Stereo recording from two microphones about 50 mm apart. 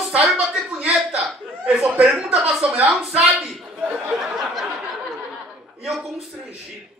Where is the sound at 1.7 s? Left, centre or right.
Right.